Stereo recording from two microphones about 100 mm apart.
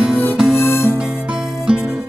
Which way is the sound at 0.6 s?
25° left (ahead or behind).